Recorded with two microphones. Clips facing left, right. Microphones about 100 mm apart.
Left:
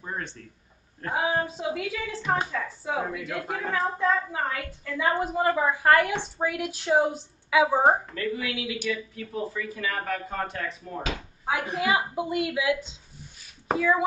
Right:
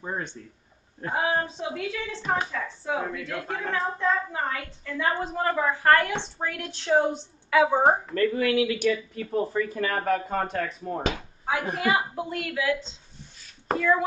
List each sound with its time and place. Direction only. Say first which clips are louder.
0.0 s speech: right 2 dB; 20° right (ahead or behind)
1.1 s a woman's voice: even; 10° left (ahead or behind)
8.1 s speech: right 7 dB; 55° right (ahead or behind); by 11.0 s 35° right (ahead or behind)
11.8 s a woman's voice: left 1 dB; 10° left (ahead or behind)